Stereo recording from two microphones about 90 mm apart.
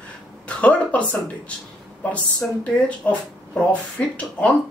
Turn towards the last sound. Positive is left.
turn(degrees=15)  # may be behind; listen again after turning